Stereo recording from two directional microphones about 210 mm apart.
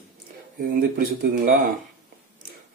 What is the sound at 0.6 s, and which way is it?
Speech, 45° right (ahead or behind).